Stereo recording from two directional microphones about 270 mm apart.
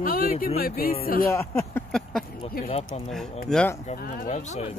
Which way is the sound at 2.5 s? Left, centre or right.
Left.